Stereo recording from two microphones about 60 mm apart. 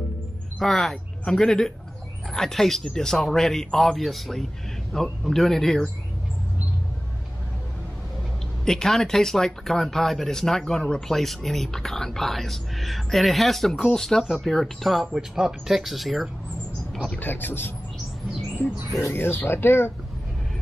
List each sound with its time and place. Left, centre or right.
0.6 s speech: centre
8.6 s speech: centre
17.2 s speech: left
18.9 s speech: left